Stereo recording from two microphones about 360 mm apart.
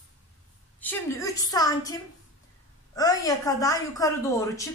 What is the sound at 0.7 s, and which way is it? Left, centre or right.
A woman's voice, centre.